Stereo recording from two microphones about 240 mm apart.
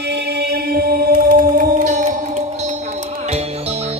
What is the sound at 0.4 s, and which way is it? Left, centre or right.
Music, right.